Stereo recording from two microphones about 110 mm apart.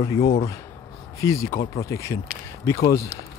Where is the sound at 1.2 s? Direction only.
30° left (ahead or behind).